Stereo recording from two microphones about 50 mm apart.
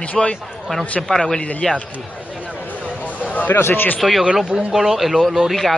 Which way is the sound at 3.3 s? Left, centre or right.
Left.